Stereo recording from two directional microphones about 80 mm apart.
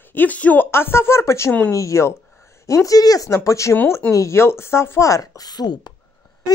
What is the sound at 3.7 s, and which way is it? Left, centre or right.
Speech, left.